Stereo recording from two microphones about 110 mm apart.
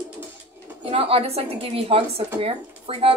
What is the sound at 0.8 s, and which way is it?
Speech, 60° right (ahead or behind).